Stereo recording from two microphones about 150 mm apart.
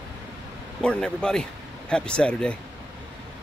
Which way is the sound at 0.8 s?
5° left (ahead or behind).